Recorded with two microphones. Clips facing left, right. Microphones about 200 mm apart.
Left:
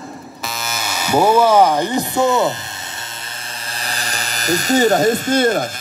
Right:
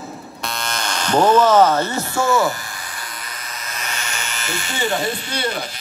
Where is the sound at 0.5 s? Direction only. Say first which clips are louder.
Even; 5° left (ahead or behind).